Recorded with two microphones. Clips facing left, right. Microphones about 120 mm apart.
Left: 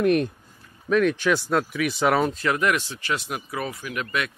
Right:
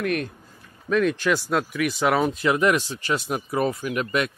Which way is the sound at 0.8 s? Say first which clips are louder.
Left 1 dB; centre (ahead or behind).